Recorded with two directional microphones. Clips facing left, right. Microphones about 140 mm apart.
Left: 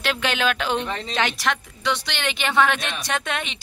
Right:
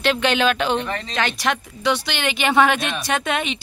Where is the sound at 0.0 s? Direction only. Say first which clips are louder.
Right 5 dB; 5° left (ahead or behind).